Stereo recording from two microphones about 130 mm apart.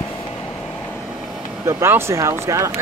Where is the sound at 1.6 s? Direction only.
20° right (ahead or behind).